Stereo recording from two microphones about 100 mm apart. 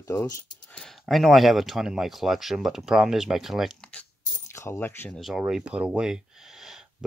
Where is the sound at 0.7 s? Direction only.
Centre (ahead or behind).